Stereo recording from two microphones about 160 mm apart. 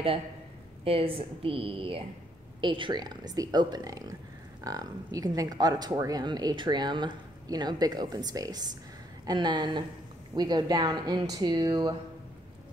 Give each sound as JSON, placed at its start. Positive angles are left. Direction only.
{"t": 0.8, "sound": "a woman's voice", "side_deg": -35}